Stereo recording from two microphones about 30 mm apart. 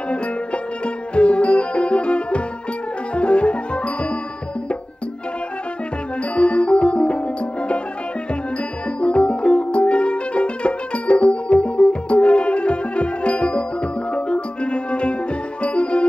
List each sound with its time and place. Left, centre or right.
0.8 s music: left
6.3 s music: left
9.0 s music: left